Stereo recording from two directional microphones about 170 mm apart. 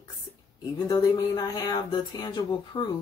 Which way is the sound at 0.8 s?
25° left (ahead or behind).